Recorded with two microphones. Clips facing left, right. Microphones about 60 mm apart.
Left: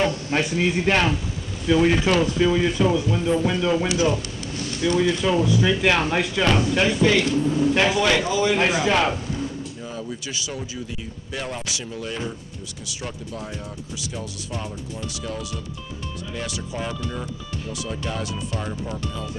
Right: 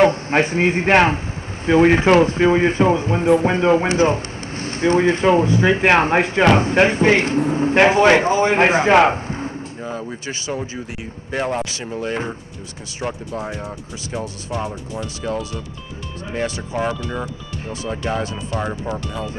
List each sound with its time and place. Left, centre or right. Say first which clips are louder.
0.0 s speech: right 7 dB; right